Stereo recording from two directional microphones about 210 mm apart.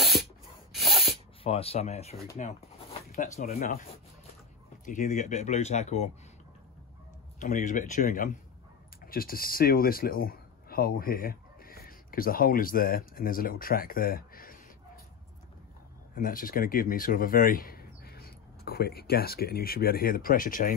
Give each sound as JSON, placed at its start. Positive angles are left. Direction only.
{"t": 0.0, "sound": "rub", "side_deg": 0}
{"t": 0.7, "sound": "a sound", "side_deg": 0}
{"t": 1.4, "sound": "speech", "side_deg": 25}
{"t": 2.3, "sound": "a sound", "side_deg": 35}
{"t": 3.3, "sound": "speech", "side_deg": 35}
{"t": 4.8, "sound": "speech", "side_deg": 40}
{"t": 7.3, "sound": "speech", "side_deg": 40}
{"t": 16.2, "sound": "speech", "side_deg": 40}